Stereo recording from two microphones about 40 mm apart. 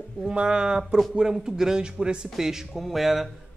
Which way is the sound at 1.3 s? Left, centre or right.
Centre.